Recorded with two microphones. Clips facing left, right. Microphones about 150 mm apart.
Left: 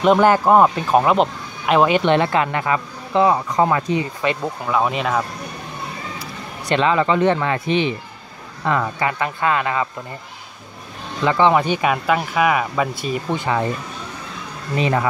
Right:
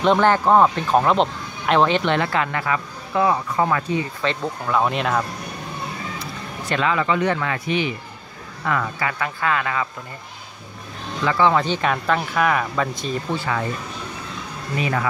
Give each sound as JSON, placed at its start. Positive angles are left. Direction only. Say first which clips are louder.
{"t": 0.0, "sound": "speech", "louder": "left 3 dB", "side_deg": 10}
{"t": 2.1, "sound": "speech", "louder": "left 4 dB", "side_deg": 20}
{"t": 6.7, "sound": "speech", "louder": "left 4 dB", "side_deg": 25}
{"t": 11.2, "sound": "speech", "louder": "left 3 dB", "side_deg": 20}
{"t": 14.8, "sound": "speech", "louder": "left 4 dB", "side_deg": 25}